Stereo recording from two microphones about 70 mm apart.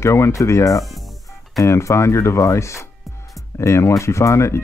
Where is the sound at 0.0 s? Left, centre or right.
Left.